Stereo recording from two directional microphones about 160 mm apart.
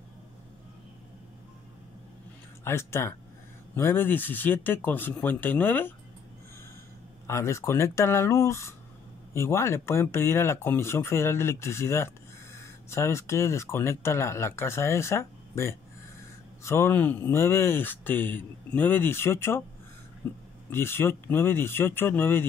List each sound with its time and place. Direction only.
2.6 s speech: 15° left (ahead or behind)
7.2 s speech: 15° left (ahead or behind)